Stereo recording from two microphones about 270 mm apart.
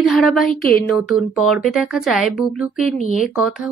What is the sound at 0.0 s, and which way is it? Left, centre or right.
Speech, centre.